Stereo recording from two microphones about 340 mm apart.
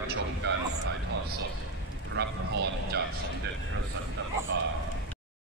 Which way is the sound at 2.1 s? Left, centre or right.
Right.